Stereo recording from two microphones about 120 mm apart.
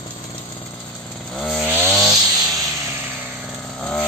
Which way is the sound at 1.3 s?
5° left (ahead or behind).